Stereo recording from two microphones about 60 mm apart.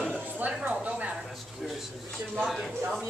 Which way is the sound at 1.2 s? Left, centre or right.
Centre.